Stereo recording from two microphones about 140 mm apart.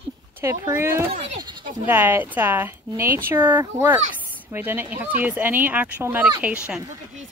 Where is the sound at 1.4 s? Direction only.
35° right (ahead or behind).